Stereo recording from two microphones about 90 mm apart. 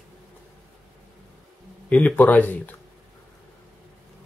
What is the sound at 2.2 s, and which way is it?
Speech, 20° left (ahead or behind).